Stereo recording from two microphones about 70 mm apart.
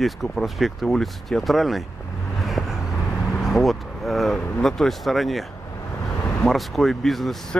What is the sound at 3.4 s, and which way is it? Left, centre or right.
Speech, centre.